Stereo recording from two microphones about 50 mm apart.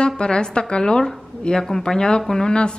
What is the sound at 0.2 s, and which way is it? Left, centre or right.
A woman's voice, centre.